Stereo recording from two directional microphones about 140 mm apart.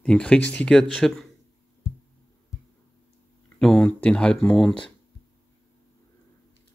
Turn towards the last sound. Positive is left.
turn(degrees=5)  # may be behind; listen again after turning